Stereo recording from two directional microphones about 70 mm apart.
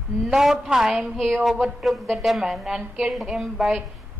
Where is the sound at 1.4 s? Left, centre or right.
Centre.